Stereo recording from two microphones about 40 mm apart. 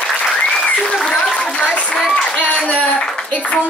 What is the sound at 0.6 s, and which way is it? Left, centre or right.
Applause, left.